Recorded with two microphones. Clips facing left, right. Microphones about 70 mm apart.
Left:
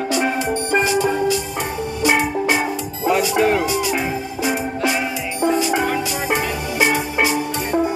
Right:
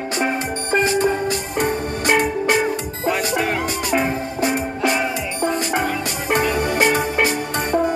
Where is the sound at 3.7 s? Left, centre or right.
Right.